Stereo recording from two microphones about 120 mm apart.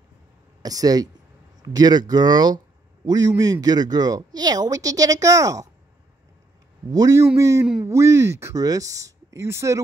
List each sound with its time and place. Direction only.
0.6 s speech: 30° right (ahead or behind)
6.9 s speech: 30° right (ahead or behind)